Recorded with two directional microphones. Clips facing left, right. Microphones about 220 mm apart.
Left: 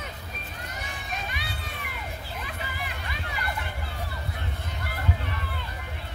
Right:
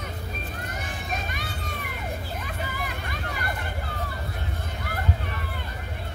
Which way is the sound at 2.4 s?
45° right (ahead or behind).